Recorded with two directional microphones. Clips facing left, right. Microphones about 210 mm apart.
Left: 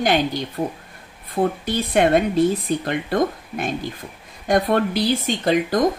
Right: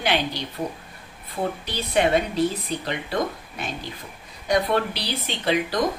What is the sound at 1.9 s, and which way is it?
Speech, 50° left (ahead or behind).